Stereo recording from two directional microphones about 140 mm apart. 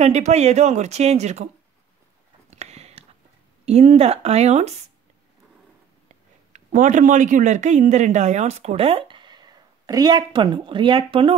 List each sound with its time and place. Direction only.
0.0 s speech: 55° right (ahead or behind)
2.5 s a sound: 50° right (ahead or behind)
3.6 s speech: 50° right (ahead or behind)
6.5 s speech: 60° right (ahead or behind); by 11.3 s 40° right (ahead or behind)